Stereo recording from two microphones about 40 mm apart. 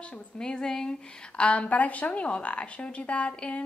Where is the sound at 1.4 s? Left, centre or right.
Left.